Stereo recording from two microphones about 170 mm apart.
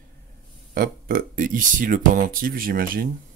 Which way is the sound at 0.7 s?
55° right (ahead or behind).